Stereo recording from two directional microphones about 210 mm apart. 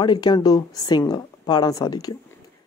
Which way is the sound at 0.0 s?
20° left (ahead or behind).